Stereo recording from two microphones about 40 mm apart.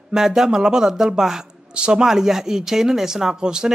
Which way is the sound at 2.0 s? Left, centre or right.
Centre.